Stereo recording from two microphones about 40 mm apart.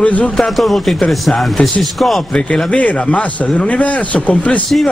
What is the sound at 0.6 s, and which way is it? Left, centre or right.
Speech, centre.